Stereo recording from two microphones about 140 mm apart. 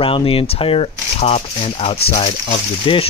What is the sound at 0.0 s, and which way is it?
Speech, 40° left (ahead or behind).